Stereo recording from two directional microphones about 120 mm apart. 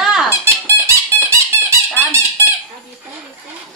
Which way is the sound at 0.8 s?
25° right (ahead or behind).